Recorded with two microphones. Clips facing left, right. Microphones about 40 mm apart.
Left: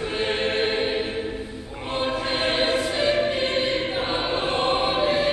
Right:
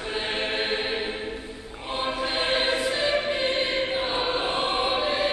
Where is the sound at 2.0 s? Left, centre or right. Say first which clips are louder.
Left 2 dB; centre.